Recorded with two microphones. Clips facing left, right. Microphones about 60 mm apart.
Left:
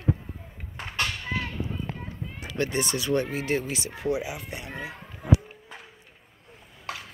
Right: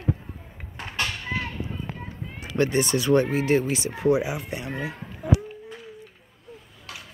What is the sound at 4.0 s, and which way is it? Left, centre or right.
Speech, right.